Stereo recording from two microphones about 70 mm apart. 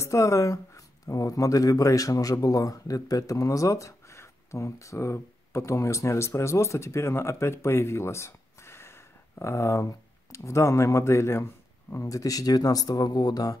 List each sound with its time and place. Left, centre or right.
0.0 s speech: left
12.0 s speech: left